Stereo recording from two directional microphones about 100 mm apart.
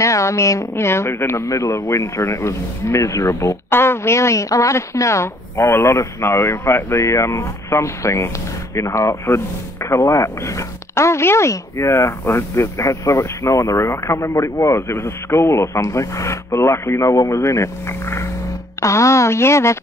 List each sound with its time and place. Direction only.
0.0 s speech: 30° left (ahead or behind)